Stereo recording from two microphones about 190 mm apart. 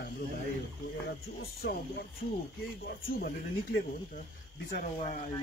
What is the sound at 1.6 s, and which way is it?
Speech, 55° left (ahead or behind).